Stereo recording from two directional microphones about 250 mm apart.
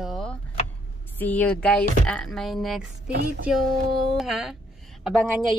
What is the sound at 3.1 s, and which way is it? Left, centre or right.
Music, right.